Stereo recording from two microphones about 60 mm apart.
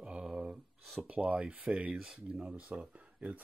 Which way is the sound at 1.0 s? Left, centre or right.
Centre.